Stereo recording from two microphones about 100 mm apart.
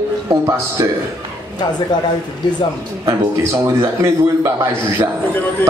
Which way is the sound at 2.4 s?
45° left (ahead or behind).